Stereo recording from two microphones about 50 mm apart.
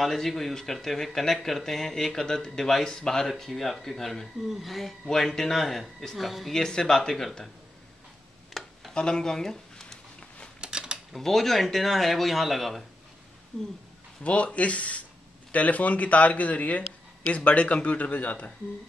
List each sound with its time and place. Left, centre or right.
0.0 s speech: centre
6.5 s speech: centre
8.6 s a sound: centre
8.9 s speech: centre
10.6 s mechanisms: centre
11.1 s speech: centre
14.2 s speech: left